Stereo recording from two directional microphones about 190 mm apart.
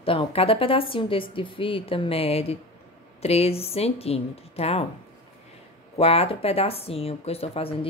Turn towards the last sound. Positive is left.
turn(degrees=30)  # may be behind; listen again after turning